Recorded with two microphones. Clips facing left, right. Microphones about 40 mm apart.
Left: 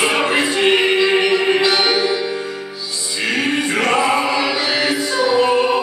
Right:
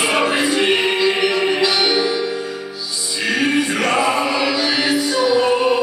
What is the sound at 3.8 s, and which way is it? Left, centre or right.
Music, centre.